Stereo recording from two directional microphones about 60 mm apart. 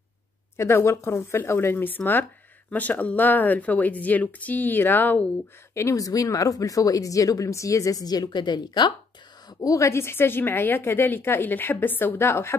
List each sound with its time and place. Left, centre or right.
0.6 s speech: left
1.9 s a woman's voice: left
5.9 s speech: left
9.5 s a woman's voice: left